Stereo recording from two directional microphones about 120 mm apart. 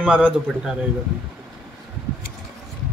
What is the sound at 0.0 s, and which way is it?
Speech, 5° right (ahead or behind).